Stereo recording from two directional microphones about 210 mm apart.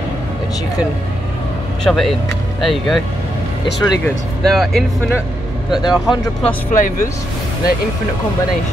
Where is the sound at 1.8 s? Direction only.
Centre (ahead or behind).